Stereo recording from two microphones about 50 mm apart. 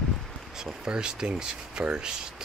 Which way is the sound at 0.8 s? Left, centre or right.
Centre.